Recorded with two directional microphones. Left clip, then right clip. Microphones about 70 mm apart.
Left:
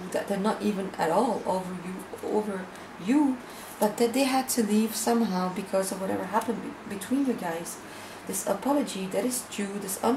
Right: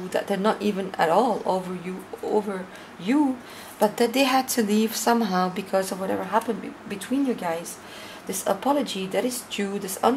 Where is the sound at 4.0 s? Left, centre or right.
Right.